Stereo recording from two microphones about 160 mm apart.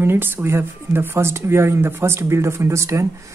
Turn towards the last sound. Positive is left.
turn(degrees=-20)  # may be behind; listen again after turning